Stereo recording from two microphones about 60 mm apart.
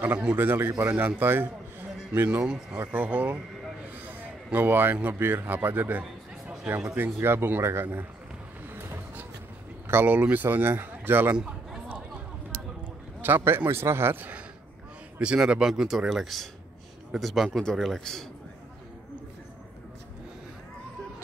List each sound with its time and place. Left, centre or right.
0.0 s speech: right
0.4 s a man's voice: right
2.1 s speech: right
4.0 s a sound: right
5.0 s speech: right
7.0 s speech: right
9.8 s speech: right
11.3 s chatter: centre
13.2 s a man's voice: right
15.1 s a man's voice: centre